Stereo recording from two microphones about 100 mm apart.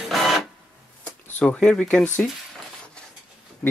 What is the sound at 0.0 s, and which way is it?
Printer, centre (ahead or behind).